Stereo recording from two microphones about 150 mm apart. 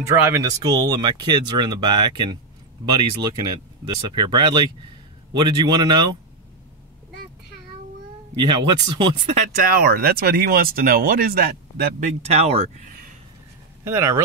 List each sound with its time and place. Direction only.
0.0 s speech: 15° right (ahead or behind)
8.4 s speech: 30° right (ahead or behind)
9.6 s speech: 75° right (ahead or behind)
12.0 s speech: 45° right (ahead or behind)
13.8 s speech: 20° right (ahead or behind)